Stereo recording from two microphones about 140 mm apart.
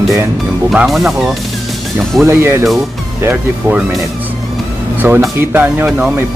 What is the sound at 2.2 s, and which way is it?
Speech, 20° right (ahead or behind).